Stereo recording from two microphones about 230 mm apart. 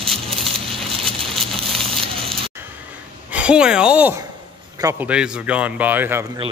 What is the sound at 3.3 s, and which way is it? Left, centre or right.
A man's voice, centre.